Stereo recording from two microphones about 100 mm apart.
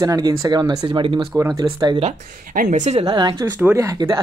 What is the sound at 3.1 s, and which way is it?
Speech, 45° right (ahead or behind).